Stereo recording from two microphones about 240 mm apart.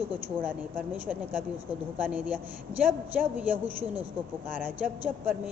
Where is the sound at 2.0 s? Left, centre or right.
Centre.